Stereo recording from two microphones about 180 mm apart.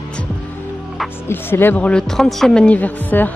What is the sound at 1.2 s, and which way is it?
A woman's voice, 10° left (ahead or behind).